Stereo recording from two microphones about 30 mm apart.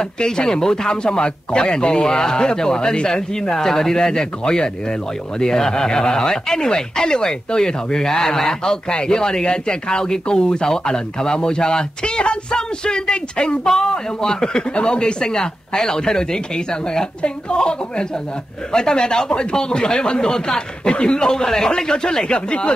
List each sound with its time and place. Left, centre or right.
0.0 s speech: left
13.7 s speech: left